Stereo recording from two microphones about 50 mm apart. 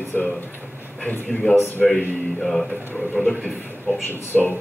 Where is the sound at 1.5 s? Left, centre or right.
Left.